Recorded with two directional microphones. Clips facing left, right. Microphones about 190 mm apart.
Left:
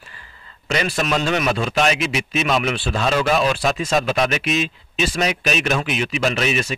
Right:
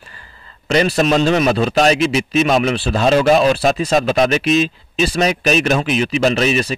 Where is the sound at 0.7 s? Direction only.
40° right (ahead or behind).